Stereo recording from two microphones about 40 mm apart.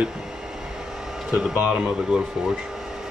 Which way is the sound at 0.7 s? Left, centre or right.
Centre.